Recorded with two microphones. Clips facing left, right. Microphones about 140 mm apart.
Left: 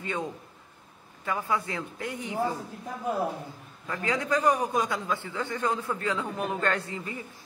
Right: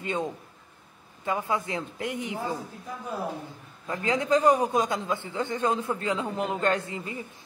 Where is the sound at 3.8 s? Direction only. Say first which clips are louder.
Right 3 dB; 20° right (ahead or behind).